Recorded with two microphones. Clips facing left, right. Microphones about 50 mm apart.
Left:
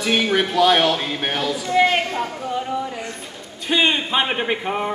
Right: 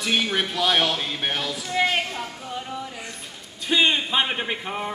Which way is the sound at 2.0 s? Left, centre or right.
Left.